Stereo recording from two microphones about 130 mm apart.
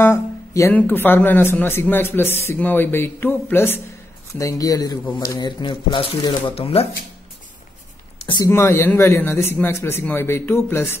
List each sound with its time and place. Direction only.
0.0 s speech: 20° left (ahead or behind)
5.4 s speech: 35° left (ahead or behind)
8.5 s speech: 15° left (ahead or behind)